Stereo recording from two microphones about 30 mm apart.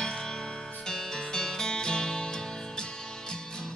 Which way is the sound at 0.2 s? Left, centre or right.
Left.